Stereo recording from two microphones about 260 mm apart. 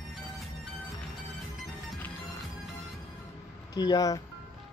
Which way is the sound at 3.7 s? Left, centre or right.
Centre.